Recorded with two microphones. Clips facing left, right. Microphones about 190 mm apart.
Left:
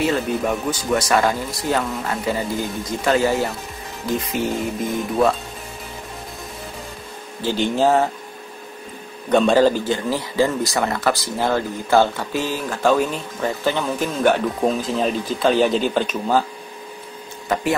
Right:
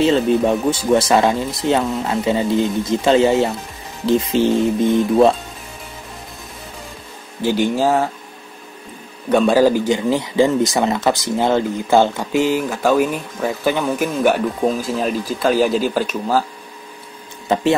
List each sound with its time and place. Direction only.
0.0 s speech: 25° right (ahead or behind)
7.4 s speech: 10° right (ahead or behind)
9.3 s speech: 10° right (ahead or behind)